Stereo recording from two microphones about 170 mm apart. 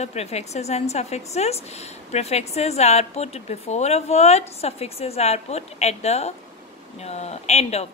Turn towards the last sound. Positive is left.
turn(degrees=40)  # may be behind; listen again after turning